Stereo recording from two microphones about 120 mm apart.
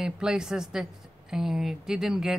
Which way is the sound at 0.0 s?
5° right (ahead or behind).